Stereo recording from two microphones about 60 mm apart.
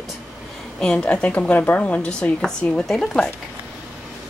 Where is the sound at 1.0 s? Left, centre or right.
Left.